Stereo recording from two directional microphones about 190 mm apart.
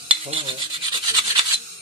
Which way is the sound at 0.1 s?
30° right (ahead or behind).